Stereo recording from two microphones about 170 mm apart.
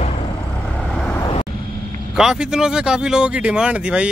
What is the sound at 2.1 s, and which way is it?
Speech, 5° right (ahead or behind).